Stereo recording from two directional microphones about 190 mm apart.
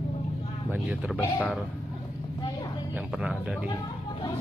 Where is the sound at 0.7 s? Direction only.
5° right (ahead or behind).